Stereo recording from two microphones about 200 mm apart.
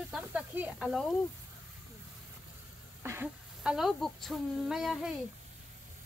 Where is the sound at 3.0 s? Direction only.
10° right (ahead or behind).